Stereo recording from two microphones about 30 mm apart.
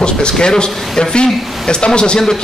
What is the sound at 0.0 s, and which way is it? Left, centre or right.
Speech, left.